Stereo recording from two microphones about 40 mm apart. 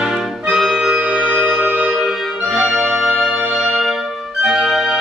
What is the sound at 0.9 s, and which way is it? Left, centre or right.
Music, centre.